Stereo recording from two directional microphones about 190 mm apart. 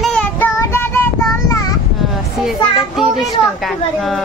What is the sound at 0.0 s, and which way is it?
Child singing, 5° left (ahead or behind).